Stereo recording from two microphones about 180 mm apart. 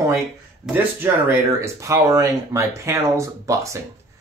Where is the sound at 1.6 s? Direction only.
15° right (ahead or behind).